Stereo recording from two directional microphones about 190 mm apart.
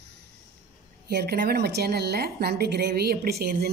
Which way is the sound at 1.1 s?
55° right (ahead or behind).